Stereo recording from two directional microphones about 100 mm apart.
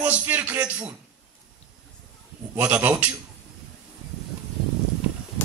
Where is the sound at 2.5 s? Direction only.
15° right (ahead or behind).